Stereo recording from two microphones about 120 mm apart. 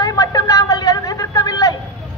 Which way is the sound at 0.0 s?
30° left (ahead or behind).